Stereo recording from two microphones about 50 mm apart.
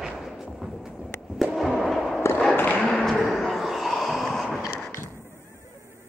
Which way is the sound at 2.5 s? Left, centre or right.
Left.